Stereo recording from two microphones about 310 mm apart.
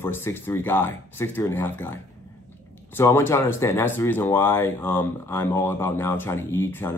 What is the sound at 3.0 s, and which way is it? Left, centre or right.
Speech, centre.